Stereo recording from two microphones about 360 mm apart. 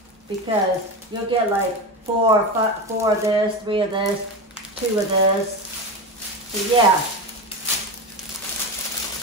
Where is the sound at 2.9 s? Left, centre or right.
Centre.